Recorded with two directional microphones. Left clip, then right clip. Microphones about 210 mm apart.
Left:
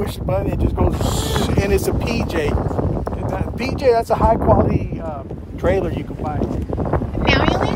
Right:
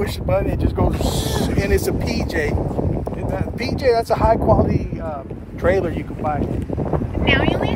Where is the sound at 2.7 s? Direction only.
30° right (ahead or behind).